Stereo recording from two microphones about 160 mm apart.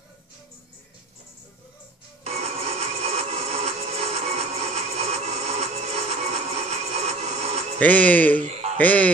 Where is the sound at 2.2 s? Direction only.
40° right (ahead or behind).